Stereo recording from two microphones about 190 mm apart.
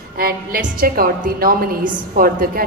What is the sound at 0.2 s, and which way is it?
A woman's voice, 50° right (ahead or behind).